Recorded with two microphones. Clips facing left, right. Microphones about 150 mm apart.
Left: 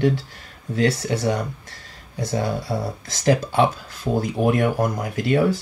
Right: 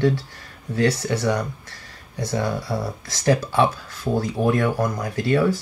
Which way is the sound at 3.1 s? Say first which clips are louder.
Left 1 dB; 20° left (ahead or behind).